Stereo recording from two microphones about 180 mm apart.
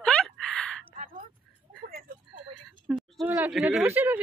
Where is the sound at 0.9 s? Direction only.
50° right (ahead or behind).